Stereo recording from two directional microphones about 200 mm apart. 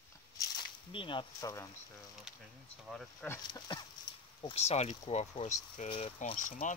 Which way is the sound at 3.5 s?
20° left (ahead or behind).